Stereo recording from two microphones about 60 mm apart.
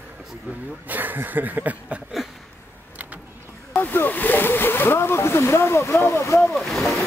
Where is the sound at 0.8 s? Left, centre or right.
Right.